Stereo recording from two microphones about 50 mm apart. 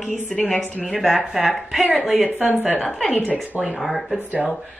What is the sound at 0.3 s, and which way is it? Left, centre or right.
Speech, centre.